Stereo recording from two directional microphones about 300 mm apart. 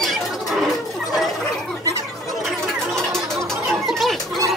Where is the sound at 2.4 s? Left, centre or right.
Centre.